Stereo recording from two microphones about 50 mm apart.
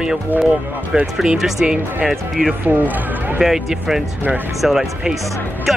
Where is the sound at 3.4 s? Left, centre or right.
Centre.